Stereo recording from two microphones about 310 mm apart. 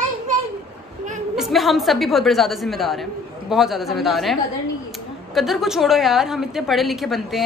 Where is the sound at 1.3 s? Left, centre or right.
Centre.